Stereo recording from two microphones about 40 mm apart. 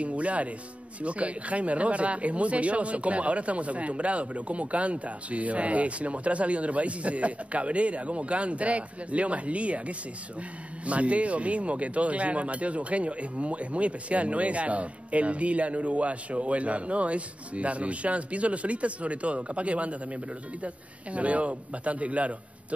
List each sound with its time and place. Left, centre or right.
0.0 s music: right
1.0 s speech: right